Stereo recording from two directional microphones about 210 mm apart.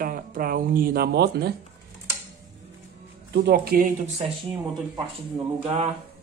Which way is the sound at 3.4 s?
45° right (ahead or behind).